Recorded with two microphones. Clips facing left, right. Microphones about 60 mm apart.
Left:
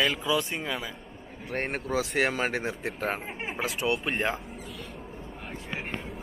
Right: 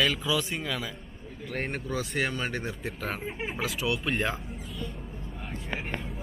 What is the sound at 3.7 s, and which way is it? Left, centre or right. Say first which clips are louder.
Speech: left 3 dB; left.